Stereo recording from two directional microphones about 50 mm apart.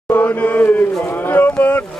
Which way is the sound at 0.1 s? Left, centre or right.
Left.